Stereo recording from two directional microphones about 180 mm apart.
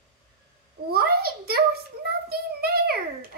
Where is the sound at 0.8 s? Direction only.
60° right (ahead or behind).